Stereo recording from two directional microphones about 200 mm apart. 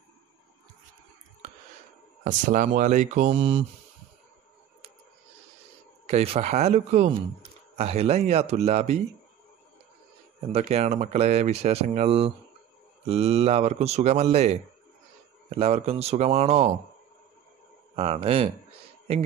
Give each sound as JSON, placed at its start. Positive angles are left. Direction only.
{"t": 2.2, "sound": "speech", "side_deg": -40}
{"t": 6.0, "sound": "speech", "side_deg": -30}
{"t": 10.5, "sound": "speech", "side_deg": -30}
{"t": 17.9, "sound": "speech", "side_deg": -30}